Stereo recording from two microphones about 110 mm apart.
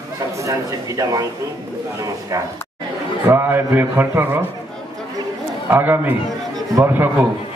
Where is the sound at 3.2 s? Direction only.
20° right (ahead or behind).